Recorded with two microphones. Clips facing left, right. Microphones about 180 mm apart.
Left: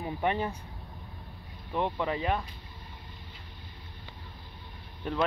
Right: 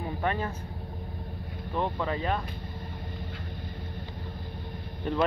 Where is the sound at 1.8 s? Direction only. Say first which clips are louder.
Even; 15° left (ahead or behind).